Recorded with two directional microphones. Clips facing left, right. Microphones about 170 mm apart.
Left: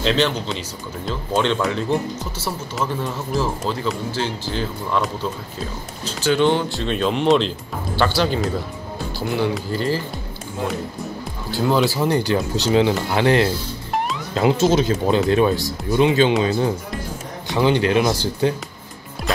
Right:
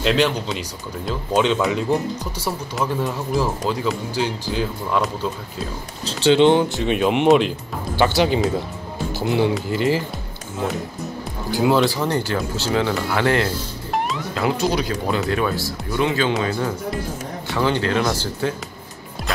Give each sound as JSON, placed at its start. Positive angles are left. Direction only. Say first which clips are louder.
{"t": 0.0, "sound": "speech", "louder": "right 1 dB", "side_deg": -5}
{"t": 6.2, "sound": "speech", "louder": "right 4 dB", "side_deg": -20}
{"t": 11.7, "sound": "speech", "louder": "left 3 dB", "side_deg": 5}
{"t": 13.9, "sound": "music", "louder": "even", "side_deg": 0}
{"t": 14.3, "sound": "speech", "louder": "left 5 dB", "side_deg": 25}